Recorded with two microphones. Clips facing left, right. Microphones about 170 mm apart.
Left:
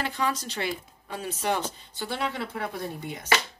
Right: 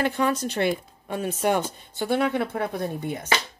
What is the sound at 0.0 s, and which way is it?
Speech, 55° right (ahead or behind).